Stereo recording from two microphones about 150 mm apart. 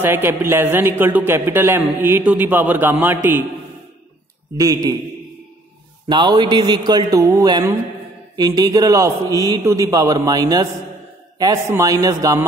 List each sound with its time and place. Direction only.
0.0 s speech: 15° right (ahead or behind)
4.6 s a man's voice: 20° right (ahead or behind)
6.0 s a man's voice: 30° right (ahead or behind)